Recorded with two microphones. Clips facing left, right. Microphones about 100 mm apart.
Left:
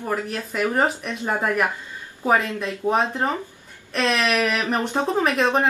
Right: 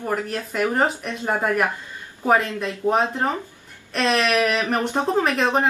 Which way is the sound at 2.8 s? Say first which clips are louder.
Right 1 dB; 15° left (ahead or behind).